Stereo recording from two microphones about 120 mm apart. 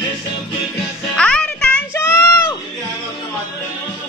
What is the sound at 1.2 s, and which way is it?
Music, 10° left (ahead or behind).